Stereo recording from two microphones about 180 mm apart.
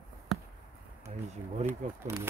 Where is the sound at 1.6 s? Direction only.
15° right (ahead or behind).